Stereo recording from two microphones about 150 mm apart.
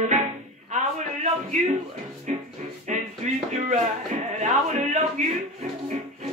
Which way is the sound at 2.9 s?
50° right (ahead or behind).